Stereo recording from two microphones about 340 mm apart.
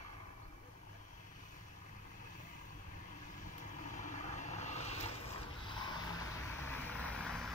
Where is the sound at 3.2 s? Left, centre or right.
Left.